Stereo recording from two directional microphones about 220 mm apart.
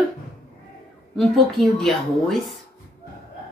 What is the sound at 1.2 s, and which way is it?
Speech, centre (ahead or behind).